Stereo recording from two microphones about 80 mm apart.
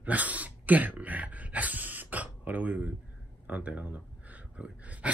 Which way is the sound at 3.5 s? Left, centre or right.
Centre.